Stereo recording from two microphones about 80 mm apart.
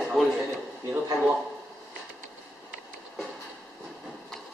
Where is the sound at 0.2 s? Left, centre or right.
Centre.